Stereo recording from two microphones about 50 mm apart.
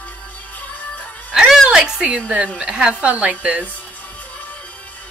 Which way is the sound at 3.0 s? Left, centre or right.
Right.